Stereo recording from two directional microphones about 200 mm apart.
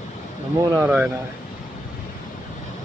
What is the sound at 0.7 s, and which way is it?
Speech, 5° right (ahead or behind).